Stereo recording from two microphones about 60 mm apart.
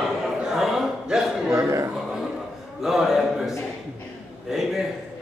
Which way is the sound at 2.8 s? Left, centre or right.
Centre.